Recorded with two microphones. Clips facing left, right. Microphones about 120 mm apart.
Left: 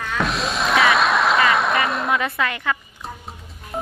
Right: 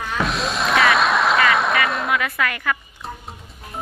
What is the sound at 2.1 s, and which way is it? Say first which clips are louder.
Speech: even; 25° left (ahead or behind).